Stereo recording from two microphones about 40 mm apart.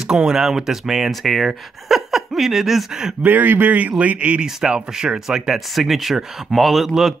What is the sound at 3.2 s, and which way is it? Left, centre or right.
A man's voice, right.